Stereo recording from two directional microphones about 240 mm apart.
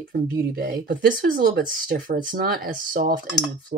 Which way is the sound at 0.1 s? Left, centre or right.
Right.